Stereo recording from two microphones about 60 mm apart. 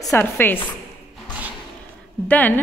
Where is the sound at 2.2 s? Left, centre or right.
Left.